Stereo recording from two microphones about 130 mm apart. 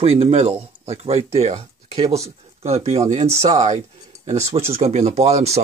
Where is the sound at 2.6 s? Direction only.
50° right (ahead or behind).